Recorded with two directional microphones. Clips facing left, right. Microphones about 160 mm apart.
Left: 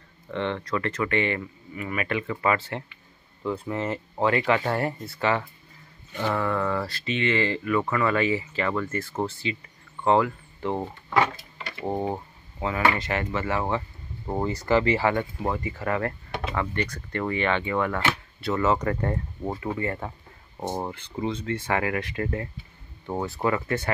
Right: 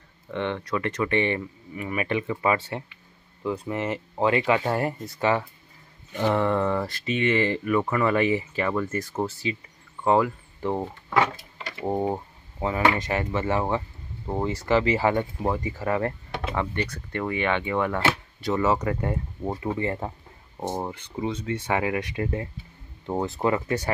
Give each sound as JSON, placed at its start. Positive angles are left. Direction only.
{"t": 0.3, "sound": "speech", "side_deg": -15}
{"t": 12.5, "sound": "speech", "side_deg": -20}
{"t": 14.2, "sound": "speech", "side_deg": 0}
{"t": 15.0, "sound": "speech", "side_deg": -15}
{"t": 19.8, "sound": "speech", "side_deg": -25}
{"t": 20.5, "sound": "speech", "side_deg": 0}
{"t": 21.2, "sound": "speech", "side_deg": -15}